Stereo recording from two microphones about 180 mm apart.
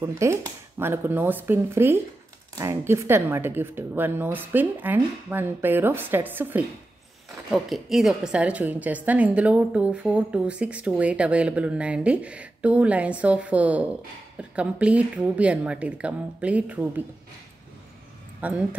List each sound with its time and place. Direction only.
0.0 s a woman's voice: 15° right (ahead or behind)
18.4 s a woman's voice: 10° right (ahead or behind)